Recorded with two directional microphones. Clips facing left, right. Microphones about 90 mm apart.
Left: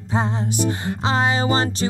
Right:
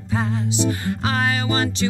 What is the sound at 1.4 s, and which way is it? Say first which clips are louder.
Speech: left 1 dB; 35° left (ahead or behind).